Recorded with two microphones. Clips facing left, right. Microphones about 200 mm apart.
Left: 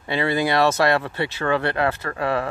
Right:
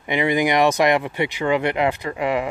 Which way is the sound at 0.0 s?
15° right (ahead or behind).